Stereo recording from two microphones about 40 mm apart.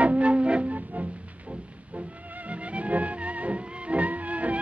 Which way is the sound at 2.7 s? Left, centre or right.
Right.